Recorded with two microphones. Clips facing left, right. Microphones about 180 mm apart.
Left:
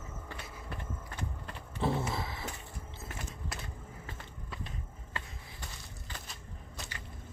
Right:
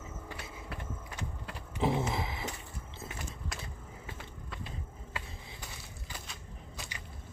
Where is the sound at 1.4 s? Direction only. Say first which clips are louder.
Right 2 dB; 15° right (ahead or behind).